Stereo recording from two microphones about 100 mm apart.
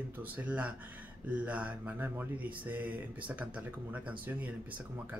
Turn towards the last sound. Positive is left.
turn(degrees=-15)  # may be behind; listen again after turning